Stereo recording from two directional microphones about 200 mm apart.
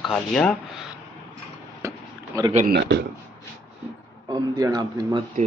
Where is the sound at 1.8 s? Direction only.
15° right (ahead or behind).